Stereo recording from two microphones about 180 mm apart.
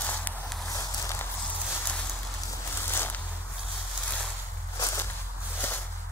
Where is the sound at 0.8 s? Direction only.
15° left (ahead or behind).